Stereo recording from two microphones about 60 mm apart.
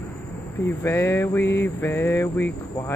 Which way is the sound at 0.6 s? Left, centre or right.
Left.